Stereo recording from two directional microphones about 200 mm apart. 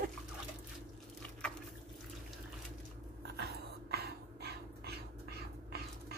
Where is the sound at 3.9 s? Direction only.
50° right (ahead or behind).